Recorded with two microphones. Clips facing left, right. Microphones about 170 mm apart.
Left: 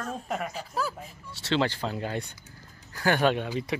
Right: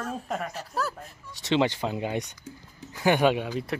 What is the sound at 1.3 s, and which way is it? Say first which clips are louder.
Speech: right 3 dB; 15° right (ahead or behind).